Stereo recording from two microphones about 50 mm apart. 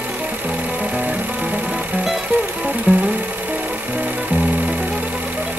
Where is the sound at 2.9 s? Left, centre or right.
Right.